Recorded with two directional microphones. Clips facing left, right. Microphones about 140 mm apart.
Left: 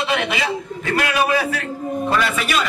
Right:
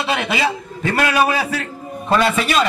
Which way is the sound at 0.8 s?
35° right (ahead or behind).